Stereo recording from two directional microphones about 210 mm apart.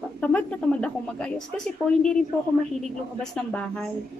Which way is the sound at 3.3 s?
5° left (ahead or behind).